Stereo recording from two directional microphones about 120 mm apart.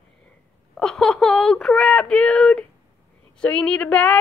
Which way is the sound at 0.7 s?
5° left (ahead or behind).